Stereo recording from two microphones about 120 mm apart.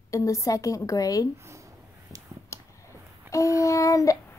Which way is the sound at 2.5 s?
25° left (ahead or behind).